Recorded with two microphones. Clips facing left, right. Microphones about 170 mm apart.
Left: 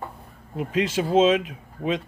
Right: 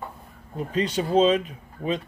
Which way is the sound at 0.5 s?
5° left (ahead or behind).